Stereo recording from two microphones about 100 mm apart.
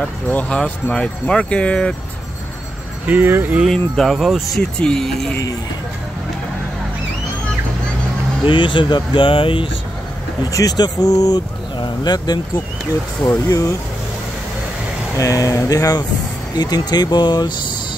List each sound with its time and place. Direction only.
0.3 s speech: 15° left (ahead or behind)
3.1 s speech: 20° right (ahead or behind)
3.6 s speech: 5° left (ahead or behind)
8.5 s speech: 55° left (ahead or behind)
10.4 s speech: 40° left (ahead or behind)
13.5 s speech: 35° left (ahead or behind)
15.1 s speech: 35° left (ahead or behind)